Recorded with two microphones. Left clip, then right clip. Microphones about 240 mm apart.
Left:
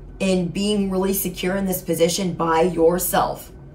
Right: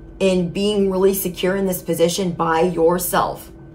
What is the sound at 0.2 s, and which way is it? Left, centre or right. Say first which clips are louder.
A woman's voice: right 4 dB; centre.